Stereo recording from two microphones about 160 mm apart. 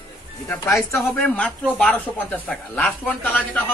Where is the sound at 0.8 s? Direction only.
15° left (ahead or behind).